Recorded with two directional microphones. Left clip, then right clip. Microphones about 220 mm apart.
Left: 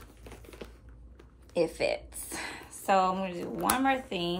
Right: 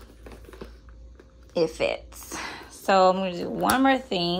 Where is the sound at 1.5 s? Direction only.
10° right (ahead or behind).